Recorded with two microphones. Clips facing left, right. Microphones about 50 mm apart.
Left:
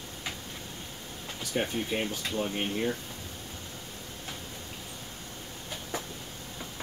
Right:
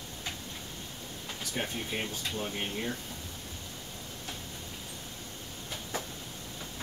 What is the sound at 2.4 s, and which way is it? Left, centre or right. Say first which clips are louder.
Speech: left 6 dB; centre.